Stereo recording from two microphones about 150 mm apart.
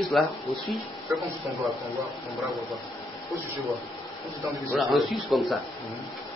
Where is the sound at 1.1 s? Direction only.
20° right (ahead or behind).